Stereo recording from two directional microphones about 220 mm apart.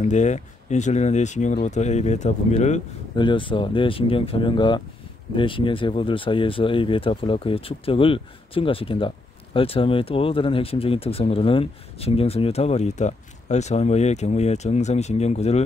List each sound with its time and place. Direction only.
0.0 s speech: 30° left (ahead or behind)